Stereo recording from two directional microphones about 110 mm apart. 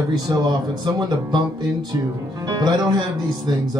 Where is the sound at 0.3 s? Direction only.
35° right (ahead or behind).